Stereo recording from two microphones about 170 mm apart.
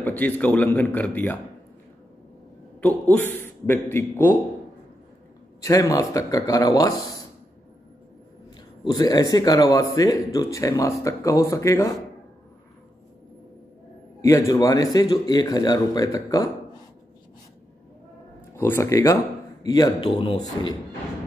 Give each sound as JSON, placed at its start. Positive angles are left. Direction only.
{"t": 0.0, "sound": "a man's voice", "side_deg": 10}
{"t": 3.1, "sound": "a man's voice", "side_deg": 10}
{"t": 5.6, "sound": "a man's voice", "side_deg": 20}
{"t": 8.8, "sound": "a man's voice", "side_deg": 25}
{"t": 14.2, "sound": "a man's voice", "side_deg": 15}
{"t": 18.6, "sound": "a man's voice", "side_deg": 15}